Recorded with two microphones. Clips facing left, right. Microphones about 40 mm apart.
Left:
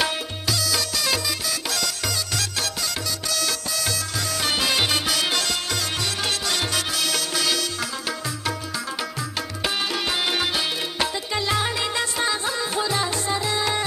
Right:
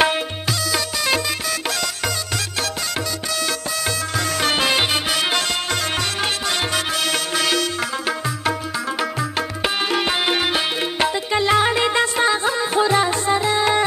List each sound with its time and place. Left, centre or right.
0.0 s music: right
4.4 s music: right
6.7 s music: right
9.6 s music: right